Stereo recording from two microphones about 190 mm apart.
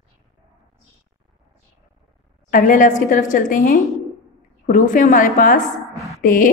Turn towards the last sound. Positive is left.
turn(degrees=45)  # may be behind; listen again after turning